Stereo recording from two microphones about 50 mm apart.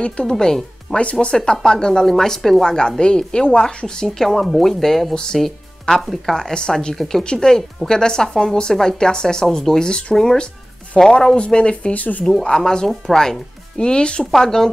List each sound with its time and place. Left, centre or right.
0.0 s speech: centre
0.9 s speech: centre
1.2 s speech: centre
5.1 s speech: centre
5.4 s music: centre
6.2 s speech: centre; by 12.3 s left
12.3 s speech: centre